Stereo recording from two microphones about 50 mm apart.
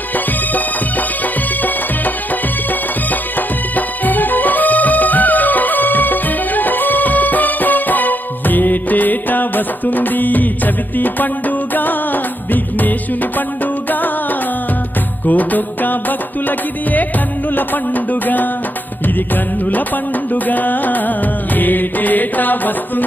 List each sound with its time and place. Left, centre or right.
3.1 s music: left
15.2 s music: left
20.4 s music: left